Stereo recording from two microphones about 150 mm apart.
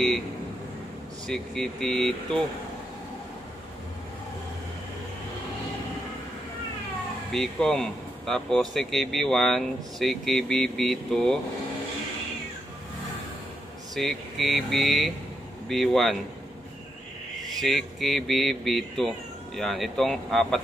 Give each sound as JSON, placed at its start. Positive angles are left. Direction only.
{"t": 1.2, "sound": "speech", "side_deg": 5}
{"t": 7.3, "sound": "speech", "side_deg": 5}
{"t": 13.9, "sound": "speech", "side_deg": 0}
{"t": 17.6, "sound": "speech", "side_deg": 0}